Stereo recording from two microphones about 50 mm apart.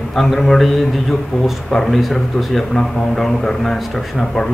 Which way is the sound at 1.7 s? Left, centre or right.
Centre.